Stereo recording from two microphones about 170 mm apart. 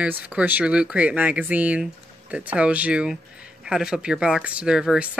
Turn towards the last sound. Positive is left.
turn(degrees=-5)  # may be behind; listen again after turning